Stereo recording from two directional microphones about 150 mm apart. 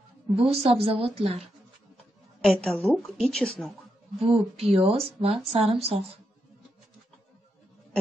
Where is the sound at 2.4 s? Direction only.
5° left (ahead or behind).